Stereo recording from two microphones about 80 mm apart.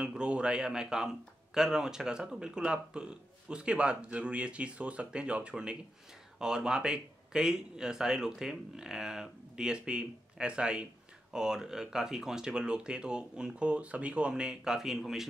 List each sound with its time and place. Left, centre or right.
0.0 s a man's voice: centre